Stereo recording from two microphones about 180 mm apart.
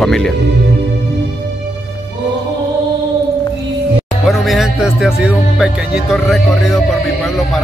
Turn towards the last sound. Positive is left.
turn(degrees=0)  # may be behind; listen again after turning